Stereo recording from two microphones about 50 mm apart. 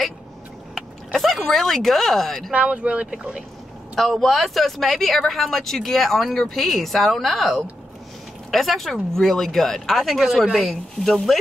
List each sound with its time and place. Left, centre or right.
0.7 s a sound: centre
2.5 s speech: right
3.9 s speech: centre